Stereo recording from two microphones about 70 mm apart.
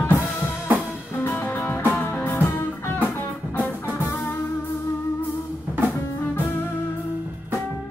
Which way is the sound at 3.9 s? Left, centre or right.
Left.